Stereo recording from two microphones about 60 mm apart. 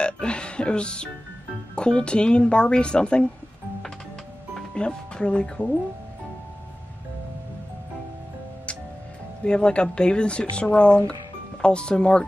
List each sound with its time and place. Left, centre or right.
0.0 s speech: centre
4.6 s speech: centre
9.4 s speech: centre